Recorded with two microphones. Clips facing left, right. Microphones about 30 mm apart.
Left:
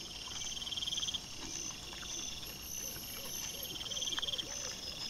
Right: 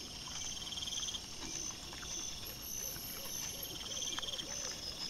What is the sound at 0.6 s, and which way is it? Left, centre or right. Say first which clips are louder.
Frog: left 5 dB; centre.